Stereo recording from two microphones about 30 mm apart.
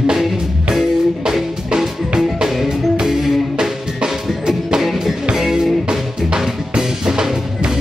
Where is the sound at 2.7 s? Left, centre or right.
Right.